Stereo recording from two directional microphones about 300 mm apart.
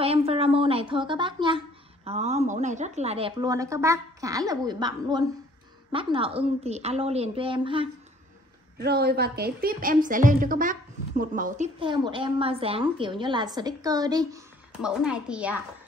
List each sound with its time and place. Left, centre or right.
0.0 s a woman's voice: centre
8.7 s a woman's voice: right; by 15.5 s centre